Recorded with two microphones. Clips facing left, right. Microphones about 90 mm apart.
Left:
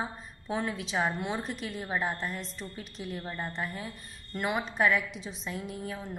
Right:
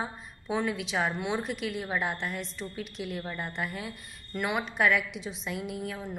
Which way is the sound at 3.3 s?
Centre (ahead or behind).